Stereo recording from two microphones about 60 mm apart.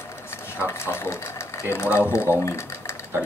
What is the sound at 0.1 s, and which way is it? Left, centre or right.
Sewing machine, left.